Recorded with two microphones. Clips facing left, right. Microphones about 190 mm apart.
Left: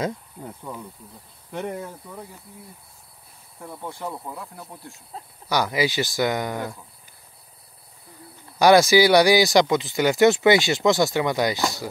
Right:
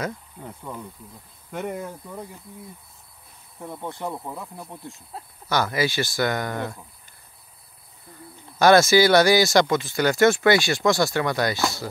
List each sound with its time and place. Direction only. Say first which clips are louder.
0.4 s speech: even; 5° left (ahead or behind)
3.6 s speech: right 2 dB; 15° right (ahead or behind)
5.5 s speech: left 1 dB; 15° left (ahead or behind)
8.5 s speech: left 1 dB; 15° left (ahead or behind)